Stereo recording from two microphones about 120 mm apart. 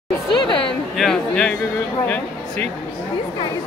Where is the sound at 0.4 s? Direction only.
40° left (ahead or behind).